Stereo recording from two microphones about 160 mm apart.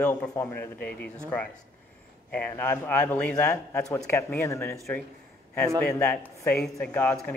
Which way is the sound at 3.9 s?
20° left (ahead or behind).